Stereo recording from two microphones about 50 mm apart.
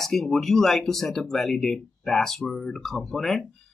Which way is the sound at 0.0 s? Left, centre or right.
Centre.